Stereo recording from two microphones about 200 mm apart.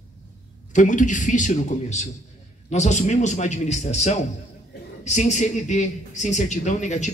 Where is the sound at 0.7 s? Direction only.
40° left (ahead or behind).